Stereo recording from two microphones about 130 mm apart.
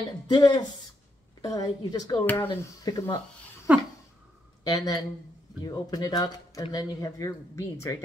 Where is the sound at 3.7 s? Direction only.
10° right (ahead or behind).